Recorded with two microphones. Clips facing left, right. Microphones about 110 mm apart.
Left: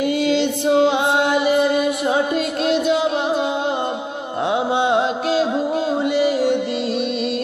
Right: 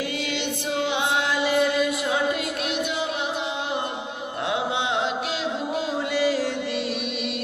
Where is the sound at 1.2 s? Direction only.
20° left (ahead or behind).